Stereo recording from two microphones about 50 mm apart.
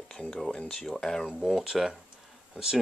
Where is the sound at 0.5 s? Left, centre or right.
Centre.